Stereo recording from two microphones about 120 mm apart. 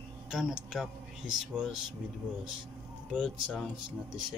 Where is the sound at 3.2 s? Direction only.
5° left (ahead or behind).